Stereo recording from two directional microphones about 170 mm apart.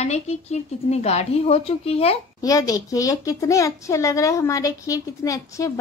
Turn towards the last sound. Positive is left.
turn(degrees=20)  # may be behind; listen again after turning